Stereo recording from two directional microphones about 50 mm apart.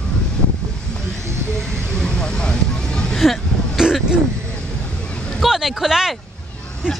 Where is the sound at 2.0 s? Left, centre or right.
Centre.